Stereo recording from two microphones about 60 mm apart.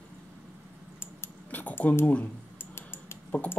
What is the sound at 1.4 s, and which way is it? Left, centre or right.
Keys jangling, left.